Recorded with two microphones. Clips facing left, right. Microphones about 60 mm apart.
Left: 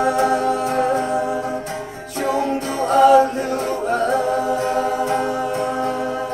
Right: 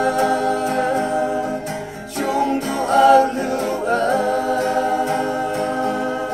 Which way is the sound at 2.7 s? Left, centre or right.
Left.